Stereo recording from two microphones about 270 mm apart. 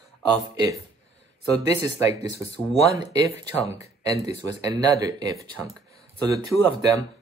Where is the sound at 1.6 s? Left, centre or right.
Centre.